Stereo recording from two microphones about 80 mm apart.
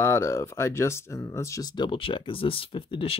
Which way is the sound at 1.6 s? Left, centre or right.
Left.